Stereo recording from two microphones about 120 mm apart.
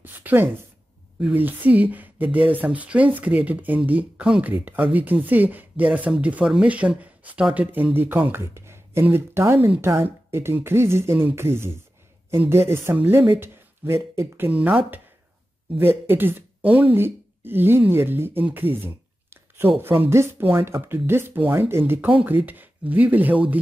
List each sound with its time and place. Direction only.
0.0 s speech: 15° right (ahead or behind)
15.8 s speech: 20° right (ahead or behind)